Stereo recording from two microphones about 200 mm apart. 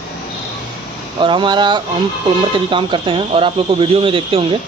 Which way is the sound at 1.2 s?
25° right (ahead or behind).